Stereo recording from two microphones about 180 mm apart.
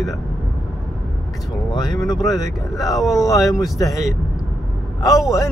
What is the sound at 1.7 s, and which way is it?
Speech, 25° left (ahead or behind).